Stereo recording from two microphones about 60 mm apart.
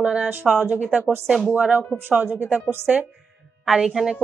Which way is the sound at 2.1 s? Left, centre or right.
Right.